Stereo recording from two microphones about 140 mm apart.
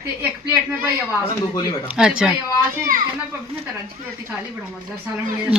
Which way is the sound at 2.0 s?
5° right (ahead or behind).